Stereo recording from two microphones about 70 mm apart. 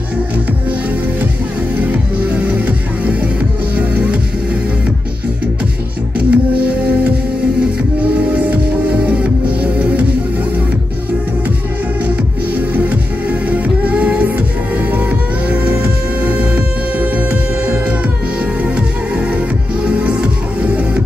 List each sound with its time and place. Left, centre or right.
1.8 s music: right
6.1 s music: centre
12.5 s music: right